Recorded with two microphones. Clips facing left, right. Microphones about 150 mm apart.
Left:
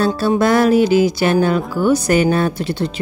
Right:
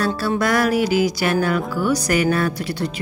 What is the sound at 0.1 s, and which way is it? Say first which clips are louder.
Speech: left 5 dB; 20° left (ahead or behind).